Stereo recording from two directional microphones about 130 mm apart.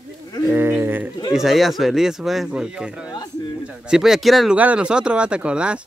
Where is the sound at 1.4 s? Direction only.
Centre (ahead or behind).